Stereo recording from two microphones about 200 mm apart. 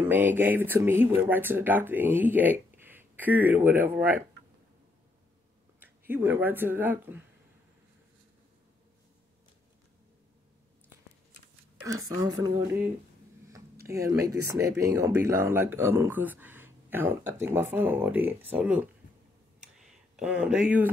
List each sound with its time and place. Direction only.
0.0 s speech: 10° right (ahead or behind)
5.8 s speech: 10° right (ahead or behind)
11.8 s speech: 15° right (ahead or behind)
13.8 s speech: 15° right (ahead or behind)
19.6 s a sound: 5° right (ahead or behind)